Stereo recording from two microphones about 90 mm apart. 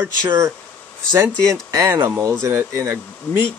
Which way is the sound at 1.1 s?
35° right (ahead or behind).